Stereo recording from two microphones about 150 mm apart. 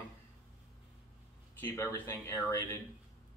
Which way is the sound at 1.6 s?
20° left (ahead or behind).